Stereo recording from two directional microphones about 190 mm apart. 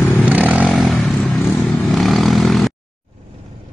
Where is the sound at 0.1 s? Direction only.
5° right (ahead or behind).